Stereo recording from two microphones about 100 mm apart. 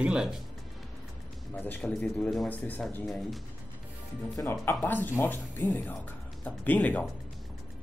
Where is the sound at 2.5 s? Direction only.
15° left (ahead or behind).